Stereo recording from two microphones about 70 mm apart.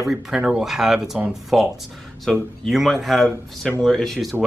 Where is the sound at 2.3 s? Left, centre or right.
Centre.